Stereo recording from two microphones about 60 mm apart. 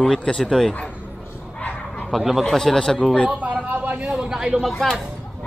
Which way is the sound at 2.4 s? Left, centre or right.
Centre.